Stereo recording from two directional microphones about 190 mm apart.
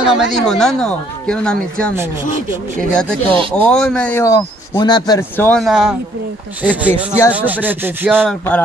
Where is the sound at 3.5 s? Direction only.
5° left (ahead or behind).